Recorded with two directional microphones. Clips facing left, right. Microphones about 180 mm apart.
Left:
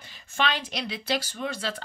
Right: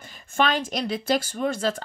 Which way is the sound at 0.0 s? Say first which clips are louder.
Right 5 dB; 45° right (ahead or behind).